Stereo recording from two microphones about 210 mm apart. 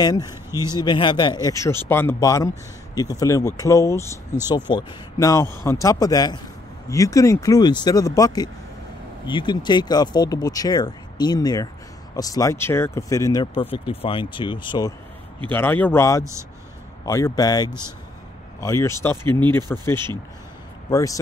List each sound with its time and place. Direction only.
0.0 s speech: 20° left (ahead or behind)
15.5 s speech: 10° left (ahead or behind)